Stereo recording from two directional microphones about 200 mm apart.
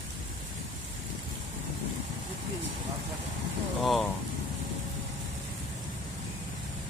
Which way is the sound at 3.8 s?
Centre (ahead or behind).